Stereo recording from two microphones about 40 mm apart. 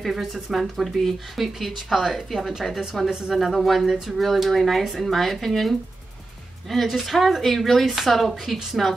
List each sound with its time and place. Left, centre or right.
0.0 s a woman's voice: centre
3.3 s speech: centre